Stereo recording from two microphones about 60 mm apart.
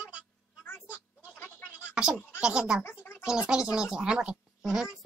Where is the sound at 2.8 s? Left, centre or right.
Left.